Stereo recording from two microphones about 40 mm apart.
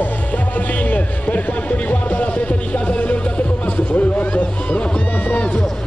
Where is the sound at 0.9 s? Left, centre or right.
Left.